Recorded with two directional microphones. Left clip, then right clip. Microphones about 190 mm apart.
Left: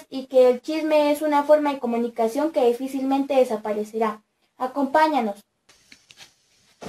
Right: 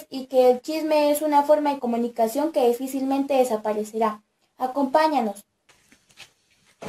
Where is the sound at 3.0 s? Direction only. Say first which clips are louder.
Left 1 dB; 15° right (ahead or behind).